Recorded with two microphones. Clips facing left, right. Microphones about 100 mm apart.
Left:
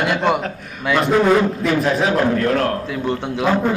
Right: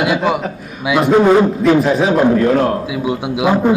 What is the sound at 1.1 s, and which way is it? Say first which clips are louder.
Speech: right 5 dB; 20° right (ahead or behind).